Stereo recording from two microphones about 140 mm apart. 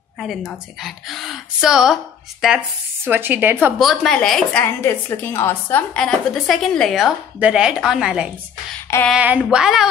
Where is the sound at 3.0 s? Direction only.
15° right (ahead or behind).